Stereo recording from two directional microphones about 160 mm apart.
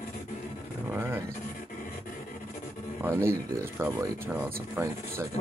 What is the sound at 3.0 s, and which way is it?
Speech, 15° right (ahead or behind).